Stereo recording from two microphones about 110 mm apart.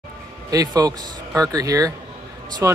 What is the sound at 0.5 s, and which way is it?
Speech, 35° right (ahead or behind).